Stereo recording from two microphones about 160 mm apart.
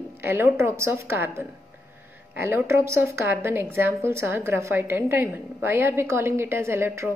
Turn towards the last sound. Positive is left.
turn(degrees=-15)  # may be behind; listen again after turning